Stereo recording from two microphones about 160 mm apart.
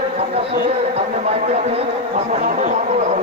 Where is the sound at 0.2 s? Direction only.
40° right (ahead or behind).